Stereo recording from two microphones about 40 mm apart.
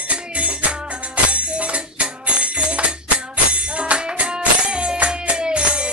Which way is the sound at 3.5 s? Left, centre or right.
Right.